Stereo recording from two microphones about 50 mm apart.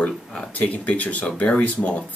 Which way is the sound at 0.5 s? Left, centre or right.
Left.